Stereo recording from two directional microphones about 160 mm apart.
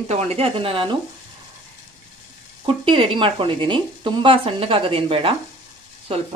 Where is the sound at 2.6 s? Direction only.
35° right (ahead or behind).